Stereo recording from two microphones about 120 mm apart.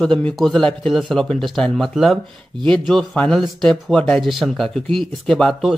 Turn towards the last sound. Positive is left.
turn(degrees=5)  # may be behind; listen again after turning